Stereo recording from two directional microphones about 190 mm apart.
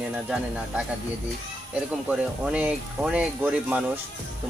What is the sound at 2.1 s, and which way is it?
Speech, 5° right (ahead or behind).